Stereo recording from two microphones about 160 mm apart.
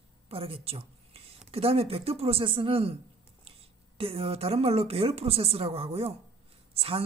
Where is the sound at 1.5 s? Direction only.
40° right (ahead or behind).